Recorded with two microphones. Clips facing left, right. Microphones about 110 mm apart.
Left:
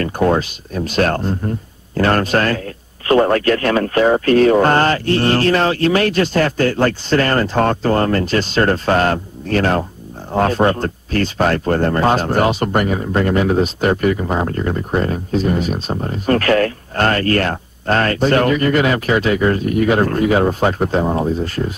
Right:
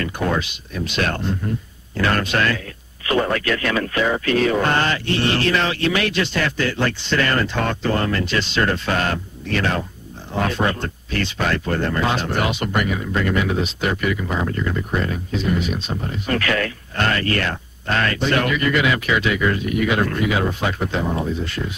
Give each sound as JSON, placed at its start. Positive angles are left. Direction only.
{"t": 0.0, "sound": "speech", "side_deg": 40}